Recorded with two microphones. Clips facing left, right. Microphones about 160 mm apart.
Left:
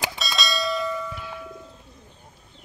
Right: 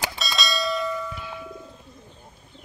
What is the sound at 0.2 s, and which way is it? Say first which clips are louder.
Bell: even; centre (ahead or behind).